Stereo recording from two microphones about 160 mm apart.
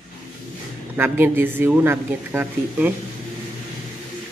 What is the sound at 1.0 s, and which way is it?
A woman's voice, 15° right (ahead or behind).